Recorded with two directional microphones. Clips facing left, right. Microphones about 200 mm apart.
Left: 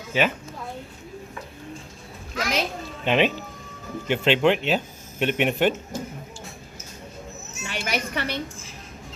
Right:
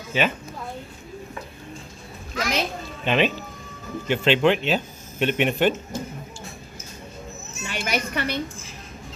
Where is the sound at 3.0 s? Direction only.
15° left (ahead or behind).